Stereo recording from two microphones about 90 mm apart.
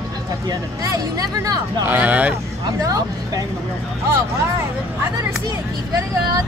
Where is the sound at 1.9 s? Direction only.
15° right (ahead or behind).